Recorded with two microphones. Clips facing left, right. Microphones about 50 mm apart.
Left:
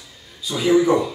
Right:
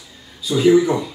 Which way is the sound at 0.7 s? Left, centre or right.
Centre.